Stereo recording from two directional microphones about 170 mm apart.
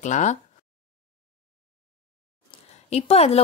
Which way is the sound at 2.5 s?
35° left (ahead or behind).